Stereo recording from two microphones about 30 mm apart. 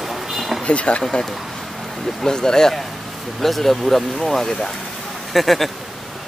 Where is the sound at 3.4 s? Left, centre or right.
Centre.